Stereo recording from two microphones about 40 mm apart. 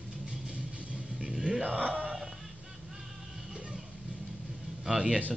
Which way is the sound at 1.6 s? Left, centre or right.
Right.